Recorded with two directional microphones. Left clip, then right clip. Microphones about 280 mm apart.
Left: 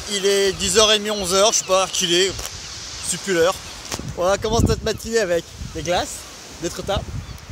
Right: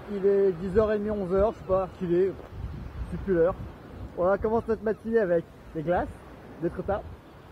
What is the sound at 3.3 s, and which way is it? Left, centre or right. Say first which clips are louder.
Speech: left 6 dB; left.